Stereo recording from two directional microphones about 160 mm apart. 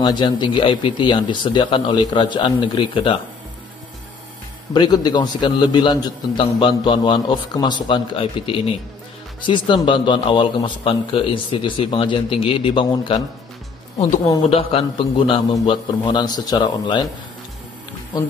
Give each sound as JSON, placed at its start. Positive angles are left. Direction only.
{"t": 0.0, "sound": "a man's voice", "side_deg": 25}
{"t": 4.7, "sound": "a man's voice", "side_deg": 25}
{"t": 13.9, "sound": "a man's voice", "side_deg": 45}